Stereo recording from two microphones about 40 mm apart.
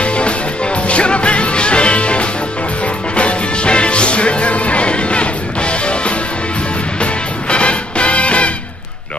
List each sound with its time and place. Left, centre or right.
0.8 s music: left